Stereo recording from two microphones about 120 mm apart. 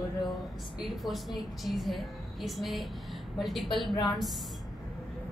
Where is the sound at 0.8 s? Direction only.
Centre (ahead or behind).